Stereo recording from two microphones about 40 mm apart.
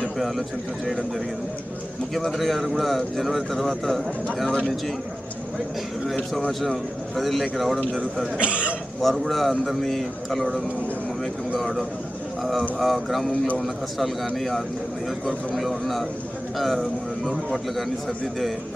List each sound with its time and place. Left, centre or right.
2.1 s a man's voice: centre
6.6 s a man's voice: centre
8.4 s speech: right
9.0 s a man's voice: centre
12.7 s a man's voice: centre
15.2 s a man's voice: centre